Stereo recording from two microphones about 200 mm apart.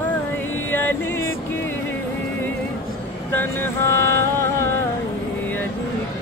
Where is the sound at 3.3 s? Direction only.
15° left (ahead or behind).